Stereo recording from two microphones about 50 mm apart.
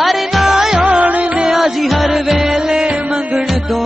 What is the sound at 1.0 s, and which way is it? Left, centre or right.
Music, right.